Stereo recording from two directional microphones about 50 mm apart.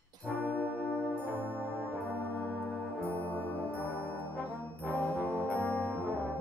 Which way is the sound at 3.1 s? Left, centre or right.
Left.